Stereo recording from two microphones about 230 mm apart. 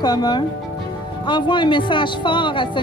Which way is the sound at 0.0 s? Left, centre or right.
Centre.